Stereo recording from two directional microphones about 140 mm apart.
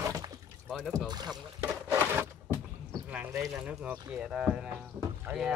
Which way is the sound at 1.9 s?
15° right (ahead or behind).